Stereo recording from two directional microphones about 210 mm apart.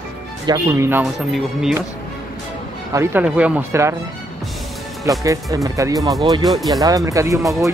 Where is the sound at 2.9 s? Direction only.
10° right (ahead or behind).